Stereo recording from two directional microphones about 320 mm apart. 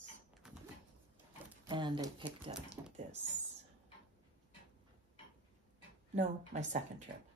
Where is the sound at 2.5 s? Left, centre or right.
Centre.